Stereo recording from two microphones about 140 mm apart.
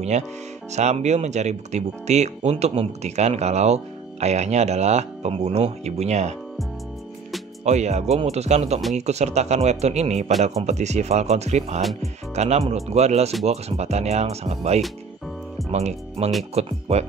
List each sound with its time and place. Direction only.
0.7 s speech: 55° right (ahead or behind)
7.6 s speech: 55° right (ahead or behind)